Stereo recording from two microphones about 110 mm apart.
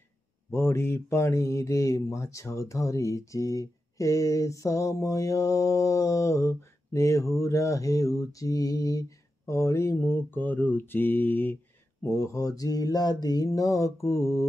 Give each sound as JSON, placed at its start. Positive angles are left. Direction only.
{"t": 0.5, "sound": "speech", "side_deg": 25}